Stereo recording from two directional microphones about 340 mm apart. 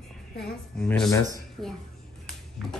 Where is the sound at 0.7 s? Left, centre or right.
Centre.